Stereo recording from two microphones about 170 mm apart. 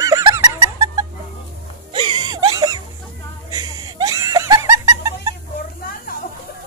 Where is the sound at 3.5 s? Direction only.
20° right (ahead or behind).